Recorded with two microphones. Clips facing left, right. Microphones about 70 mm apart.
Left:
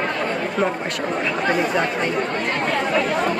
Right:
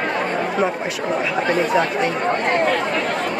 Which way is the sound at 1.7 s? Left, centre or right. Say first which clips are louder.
Right 3 dB; centre.